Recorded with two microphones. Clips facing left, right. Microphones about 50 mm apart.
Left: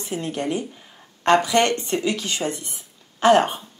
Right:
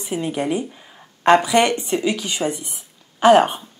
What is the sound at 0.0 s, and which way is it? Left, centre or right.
Speech, centre.